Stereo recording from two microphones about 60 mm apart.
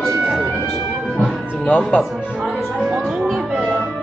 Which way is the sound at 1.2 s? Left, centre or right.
Left.